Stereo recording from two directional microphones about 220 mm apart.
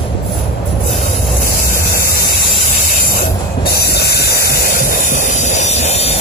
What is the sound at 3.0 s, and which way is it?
Train, 45° left (ahead or behind).